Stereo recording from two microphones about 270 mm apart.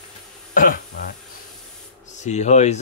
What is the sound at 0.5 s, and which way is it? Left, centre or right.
Throat clearing, left.